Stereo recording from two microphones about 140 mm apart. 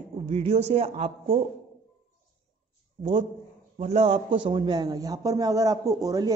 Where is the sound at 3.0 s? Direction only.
35° right (ahead or behind).